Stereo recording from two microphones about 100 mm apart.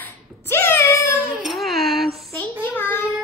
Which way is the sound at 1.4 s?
Centre (ahead or behind).